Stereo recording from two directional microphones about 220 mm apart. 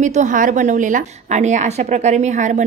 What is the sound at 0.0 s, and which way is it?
A woman's voice, 35° right (ahead or behind).